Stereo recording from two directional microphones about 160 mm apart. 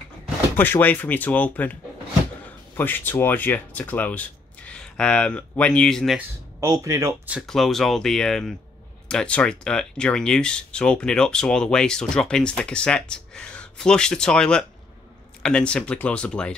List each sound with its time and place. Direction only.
0.6 s speech: 10° left (ahead or behind)
6.1 s speech: 20° right (ahead or behind)
7.3 s speech: centre (ahead or behind)